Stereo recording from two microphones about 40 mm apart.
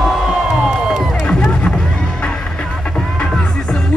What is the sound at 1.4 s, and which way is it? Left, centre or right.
Music, centre.